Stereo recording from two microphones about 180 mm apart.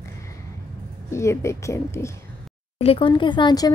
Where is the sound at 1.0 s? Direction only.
15° left (ahead or behind).